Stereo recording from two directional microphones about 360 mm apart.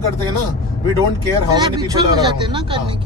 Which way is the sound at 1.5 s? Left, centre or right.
Centre.